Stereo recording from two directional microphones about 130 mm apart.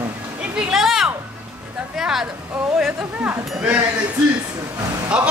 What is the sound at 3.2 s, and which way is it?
Speech, 10° right (ahead or behind).